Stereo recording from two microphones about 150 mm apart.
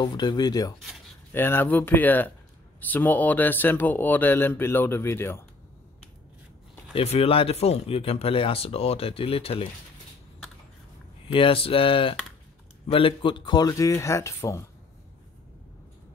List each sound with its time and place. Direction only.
0.0 s speech: 30° left (ahead or behind)
1.3 s speech: 15° left (ahead or behind)
7.0 s speech: 40° left (ahead or behind)
11.3 s speech: 35° left (ahead or behind); by 14.6 s 20° left (ahead or behind)